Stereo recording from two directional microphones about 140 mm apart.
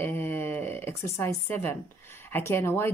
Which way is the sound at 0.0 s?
15° left (ahead or behind).